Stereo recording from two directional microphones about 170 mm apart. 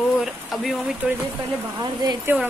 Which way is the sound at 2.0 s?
20° right (ahead or behind).